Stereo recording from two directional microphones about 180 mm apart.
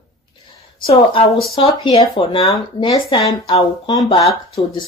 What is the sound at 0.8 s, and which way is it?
Speech, 30° left (ahead or behind).